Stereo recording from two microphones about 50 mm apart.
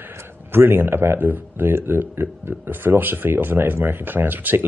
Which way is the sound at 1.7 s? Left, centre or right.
Right.